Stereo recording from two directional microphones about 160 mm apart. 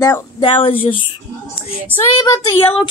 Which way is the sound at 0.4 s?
35° left (ahead or behind).